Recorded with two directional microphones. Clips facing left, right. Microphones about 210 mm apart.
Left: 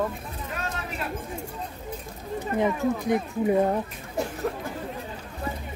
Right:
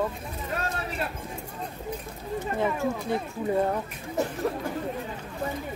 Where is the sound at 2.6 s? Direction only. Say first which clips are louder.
Left 4 dB; 15° left (ahead or behind).